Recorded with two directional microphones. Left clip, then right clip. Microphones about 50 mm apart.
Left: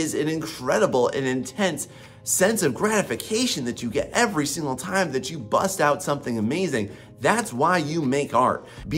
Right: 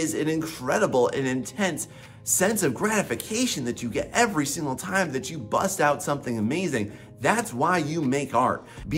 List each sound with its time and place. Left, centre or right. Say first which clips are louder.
0.0 s speech: left 1 dB; left